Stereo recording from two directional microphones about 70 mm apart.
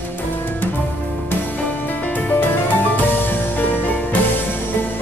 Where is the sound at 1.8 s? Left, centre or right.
Left.